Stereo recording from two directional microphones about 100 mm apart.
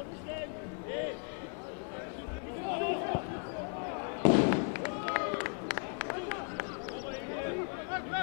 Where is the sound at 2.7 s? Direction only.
15° left (ahead or behind).